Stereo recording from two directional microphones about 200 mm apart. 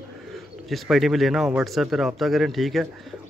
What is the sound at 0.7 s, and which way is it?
A man's voice, centre (ahead or behind).